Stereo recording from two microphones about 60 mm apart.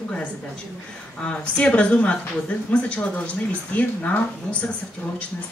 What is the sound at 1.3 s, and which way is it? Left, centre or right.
A woman's voice, centre.